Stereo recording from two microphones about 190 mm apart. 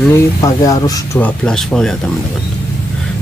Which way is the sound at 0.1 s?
20° left (ahead or behind).